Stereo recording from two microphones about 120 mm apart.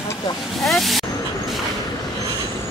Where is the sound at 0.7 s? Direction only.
Centre (ahead or behind).